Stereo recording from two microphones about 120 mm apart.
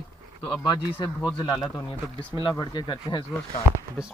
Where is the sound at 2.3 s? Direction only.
40° left (ahead or behind).